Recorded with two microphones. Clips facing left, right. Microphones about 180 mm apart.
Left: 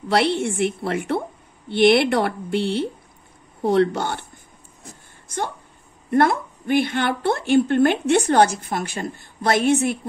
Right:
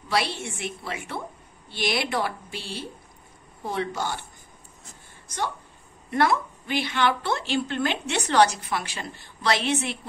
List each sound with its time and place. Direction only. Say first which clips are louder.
0.1 s speech: left 8 dB; 60° left (ahead or behind)
4.8 s vehicle: left 8 dB; 55° left (ahead or behind)
6.0 s a woman's voice: left 5 dB; 50° left (ahead or behind)